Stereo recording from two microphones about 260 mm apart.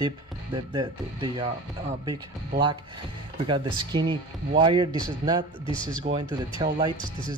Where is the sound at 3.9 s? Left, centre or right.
Centre.